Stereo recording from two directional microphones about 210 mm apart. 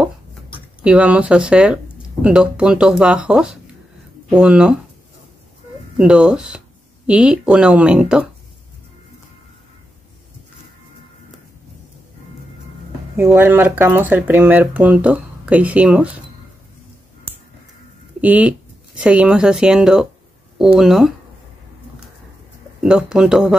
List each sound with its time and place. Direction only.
0.8 s speech: 5° right (ahead or behind)
5.9 s speech: 5° right (ahead or behind)
13.1 s speech: 10° right (ahead or behind)
18.2 s speech: 5° right (ahead or behind)
22.8 s speech: 5° right (ahead or behind)